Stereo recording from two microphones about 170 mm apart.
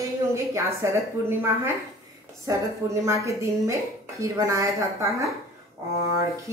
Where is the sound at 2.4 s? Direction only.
15° right (ahead or behind).